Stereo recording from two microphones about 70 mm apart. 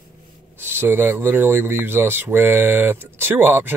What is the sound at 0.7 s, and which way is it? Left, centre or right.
Speech, right.